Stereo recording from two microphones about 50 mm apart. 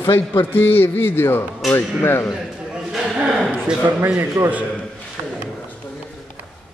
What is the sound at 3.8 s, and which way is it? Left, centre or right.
Speech, right.